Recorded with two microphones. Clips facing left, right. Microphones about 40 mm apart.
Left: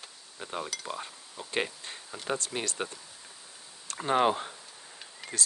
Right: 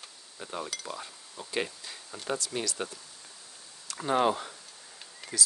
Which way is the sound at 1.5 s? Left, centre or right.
Left.